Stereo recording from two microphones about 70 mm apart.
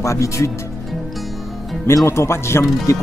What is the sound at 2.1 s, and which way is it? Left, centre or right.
Speech, left.